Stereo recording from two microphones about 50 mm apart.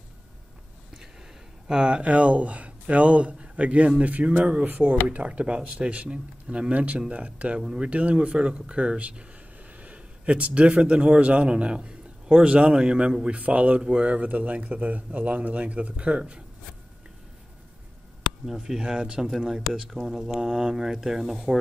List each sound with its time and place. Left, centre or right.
1.7 s speech: centre
18.6 s speech: centre
20.2 s speech: centre